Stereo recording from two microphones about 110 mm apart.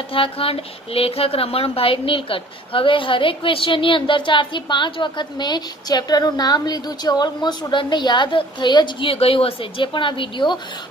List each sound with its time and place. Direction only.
0.1 s speech: 55° left (ahead or behind)
9.1 s speech: 60° left (ahead or behind); by 10.6 s 45° left (ahead or behind)